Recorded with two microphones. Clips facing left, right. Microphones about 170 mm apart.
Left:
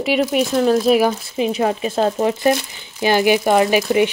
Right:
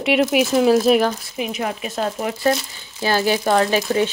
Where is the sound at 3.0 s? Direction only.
15° left (ahead or behind).